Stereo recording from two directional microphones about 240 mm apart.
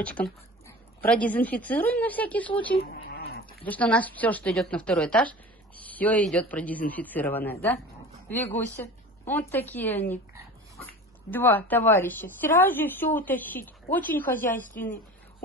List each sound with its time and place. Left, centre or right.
0.0 s speech: centre
2.8 s a sound: left
3.6 s a woman's voice: centre
14.4 s a woman's voice: left